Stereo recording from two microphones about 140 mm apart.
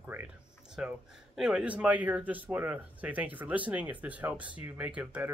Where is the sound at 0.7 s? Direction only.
5° right (ahead or behind).